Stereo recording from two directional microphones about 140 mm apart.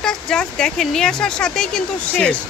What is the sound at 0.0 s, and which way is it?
Speech, 5° left (ahead or behind).